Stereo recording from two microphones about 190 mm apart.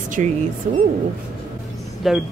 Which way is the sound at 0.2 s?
40° right (ahead or behind).